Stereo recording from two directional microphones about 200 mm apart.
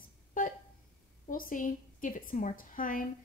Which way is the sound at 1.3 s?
40° left (ahead or behind).